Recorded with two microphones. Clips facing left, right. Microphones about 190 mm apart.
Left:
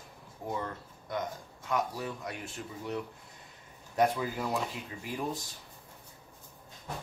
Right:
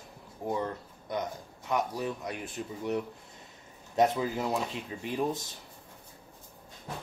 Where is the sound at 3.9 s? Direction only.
20° right (ahead or behind).